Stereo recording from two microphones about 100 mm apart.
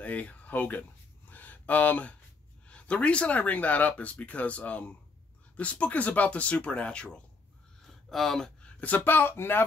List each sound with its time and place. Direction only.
0.0 s speech: 15° left (ahead or behind)
1.3 s a sound: 15° left (ahead or behind)
2.6 s speech: 10° left (ahead or behind)